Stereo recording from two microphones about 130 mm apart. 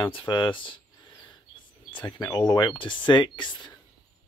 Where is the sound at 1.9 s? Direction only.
35° left (ahead or behind).